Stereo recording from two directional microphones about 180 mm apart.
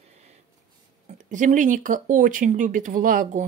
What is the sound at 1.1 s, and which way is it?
Speech, 45° right (ahead or behind).